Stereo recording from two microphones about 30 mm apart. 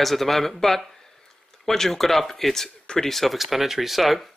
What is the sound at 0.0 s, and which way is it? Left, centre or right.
Speech, centre.